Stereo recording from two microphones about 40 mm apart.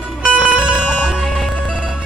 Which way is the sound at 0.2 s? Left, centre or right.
Right.